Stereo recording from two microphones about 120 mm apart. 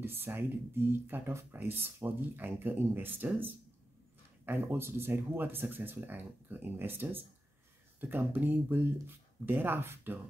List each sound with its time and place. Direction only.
0.0 s speech: 20° right (ahead or behind)